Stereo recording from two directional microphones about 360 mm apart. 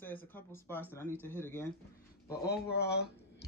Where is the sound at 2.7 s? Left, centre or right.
Left.